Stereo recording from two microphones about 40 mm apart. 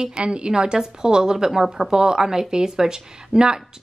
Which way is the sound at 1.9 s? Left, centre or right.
Centre.